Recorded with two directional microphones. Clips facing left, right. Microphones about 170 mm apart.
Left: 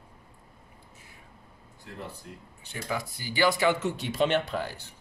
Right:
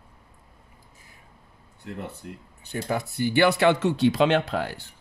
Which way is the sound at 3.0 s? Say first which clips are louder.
Right 6 dB; 60° right (ahead or behind).